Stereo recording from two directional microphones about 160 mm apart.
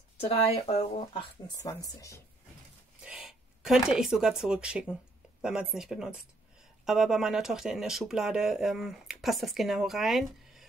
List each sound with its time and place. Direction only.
0.2 s speech: 40° left (ahead or behind)
1.6 s speech: 20° left (ahead or behind)
3.0 s speech: 5° right (ahead or behind)